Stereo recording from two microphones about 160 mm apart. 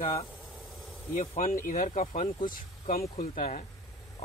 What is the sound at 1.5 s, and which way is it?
Speech, 55° left (ahead or behind).